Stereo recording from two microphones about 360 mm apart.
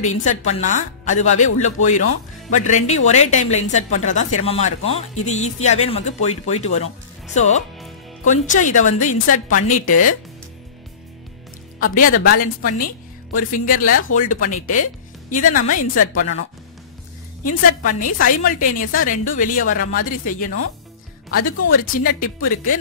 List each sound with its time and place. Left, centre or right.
0.2 s a woman's voice: centre
11.8 s a woman's voice: left
16.0 s a woman's voice: left
17.8 s a woman's voice: left